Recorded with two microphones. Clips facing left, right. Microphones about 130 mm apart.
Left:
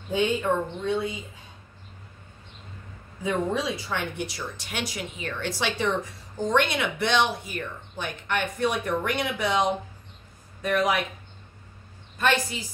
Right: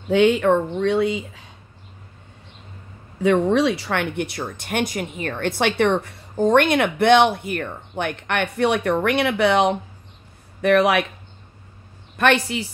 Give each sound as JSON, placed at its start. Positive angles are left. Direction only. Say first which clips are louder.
{"t": 0.1, "sound": "speech", "louder": "right 8 dB", "side_deg": -80}
{"t": 3.2, "sound": "speech", "louder": "right 9 dB", "side_deg": -75}
{"t": 12.2, "sound": "speech", "louder": "right 6 dB", "side_deg": -70}